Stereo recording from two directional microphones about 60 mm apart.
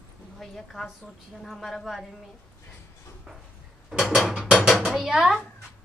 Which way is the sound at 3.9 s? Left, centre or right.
Centre.